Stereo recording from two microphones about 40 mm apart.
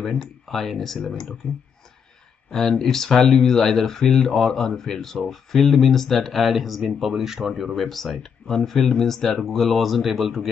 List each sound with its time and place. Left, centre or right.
0.0 s speech: centre
1.4 s speech: left
2.8 s speech: centre
7.7 s speech: centre